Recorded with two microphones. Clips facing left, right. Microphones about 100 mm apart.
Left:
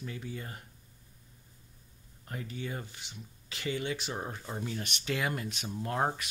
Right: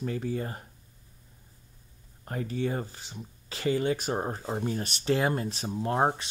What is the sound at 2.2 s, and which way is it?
Speech, 40° right (ahead or behind).